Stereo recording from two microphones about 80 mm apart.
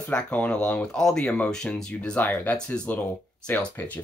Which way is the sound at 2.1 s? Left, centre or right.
Left.